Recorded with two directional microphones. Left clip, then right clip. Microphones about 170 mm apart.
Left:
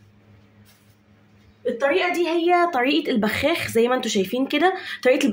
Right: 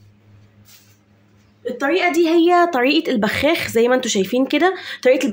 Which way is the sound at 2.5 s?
20° right (ahead or behind).